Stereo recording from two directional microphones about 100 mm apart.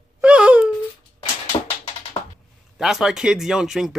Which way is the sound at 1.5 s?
65° left (ahead or behind).